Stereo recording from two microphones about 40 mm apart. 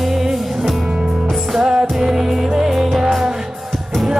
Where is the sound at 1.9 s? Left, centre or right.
Centre.